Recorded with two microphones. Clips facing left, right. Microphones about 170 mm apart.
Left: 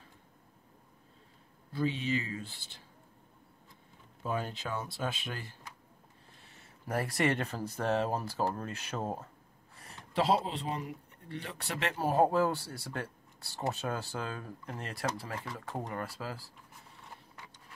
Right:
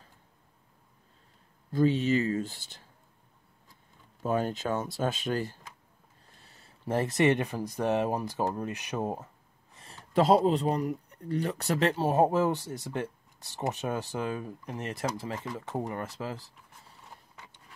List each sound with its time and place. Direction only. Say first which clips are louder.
1.7 s speech: right 7 dB; 45° right (ahead or behind)
4.2 s speech: right 7 dB; 45° right (ahead or behind); by 9.3 s 15° right (ahead or behind)
10.1 s speech: right 7 dB; 45° right (ahead or behind); by 16.5 s 20° right (ahead or behind)